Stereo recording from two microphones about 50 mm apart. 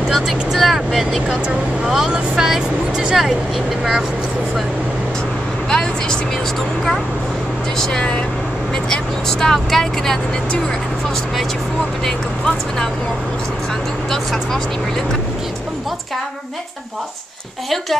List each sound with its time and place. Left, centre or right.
0.1 s speech: centre
5.7 s speech: centre
7.8 s speech: centre
12.0 s speech: centre
14.1 s speech: centre